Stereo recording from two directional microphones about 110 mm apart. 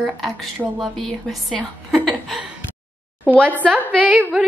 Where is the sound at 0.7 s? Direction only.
5° left (ahead or behind).